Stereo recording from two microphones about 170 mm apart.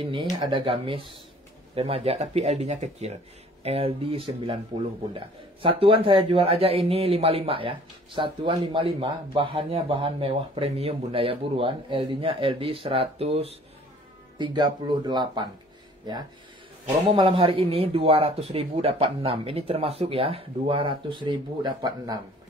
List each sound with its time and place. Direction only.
0.5 s speech: 30° right (ahead or behind)
17.1 s speech: 30° right (ahead or behind)